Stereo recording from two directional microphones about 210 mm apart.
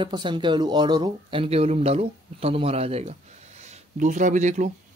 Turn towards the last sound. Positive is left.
turn(degrees=-35)  # may be behind; listen again after turning